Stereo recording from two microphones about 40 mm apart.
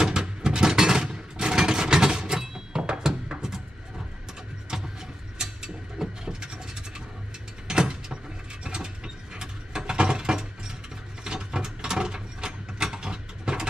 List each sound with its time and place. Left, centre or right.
0.0 s a sound: centre
5.4 s mechanisms: centre
11.2 s ratchet: centre